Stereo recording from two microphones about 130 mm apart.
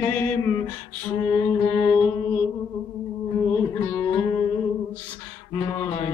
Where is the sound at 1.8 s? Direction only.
15° left (ahead or behind).